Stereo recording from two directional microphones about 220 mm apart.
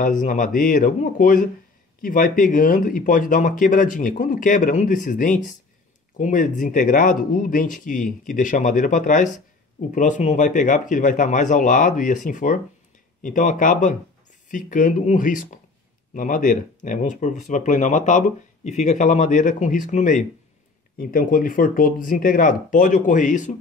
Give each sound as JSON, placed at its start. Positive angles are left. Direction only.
{"t": 0.0, "sound": "speech", "side_deg": 35}